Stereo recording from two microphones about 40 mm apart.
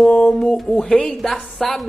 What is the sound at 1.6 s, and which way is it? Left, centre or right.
Speech, centre.